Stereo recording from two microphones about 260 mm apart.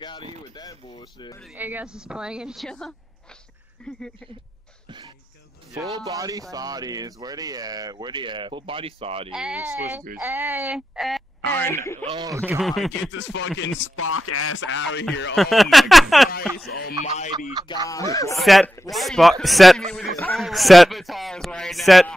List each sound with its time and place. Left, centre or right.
0.6 s speech: centre
1.4 s speech: centre
5.9 s speech: centre
9.3 s speech: centre
12.0 s speech: centre
12.4 s speech: centre
13.1 s chopping: left
15.3 s speech: centre
17.0 s speech: left
17.8 s speech: centre
18.4 s speech: centre